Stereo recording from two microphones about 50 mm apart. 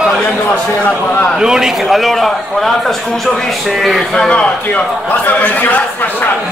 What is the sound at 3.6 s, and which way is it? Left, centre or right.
Speech, centre.